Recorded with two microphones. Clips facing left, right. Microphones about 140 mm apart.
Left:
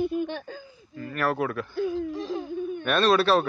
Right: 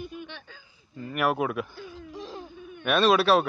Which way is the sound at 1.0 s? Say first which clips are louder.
Even; 15° right (ahead or behind).